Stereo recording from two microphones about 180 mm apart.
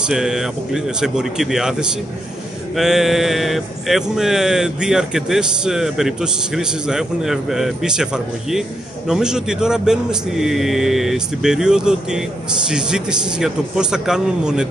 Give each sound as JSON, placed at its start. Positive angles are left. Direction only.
{"t": 0.0, "sound": "speech", "side_deg": -5}